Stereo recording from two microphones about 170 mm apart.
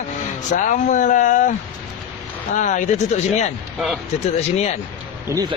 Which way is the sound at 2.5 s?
45° left (ahead or behind).